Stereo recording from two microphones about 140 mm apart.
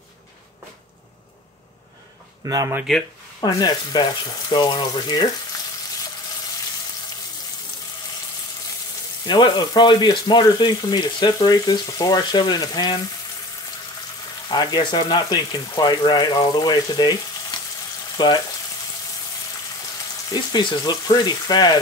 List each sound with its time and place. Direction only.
2.4 s speech: 25° right (ahead or behind)
3.3 s speech: 25° left (ahead or behind)
9.2 s speech: 30° left (ahead or behind)
14.5 s speech: 30° left (ahead or behind)
18.1 s frying: 30° left (ahead or behind)
20.2 s speech: 35° left (ahead or behind)